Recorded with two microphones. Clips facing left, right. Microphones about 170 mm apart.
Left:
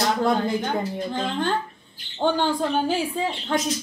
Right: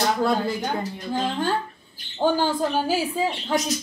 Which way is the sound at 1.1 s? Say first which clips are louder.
Right 2 dB; 5° right (ahead or behind).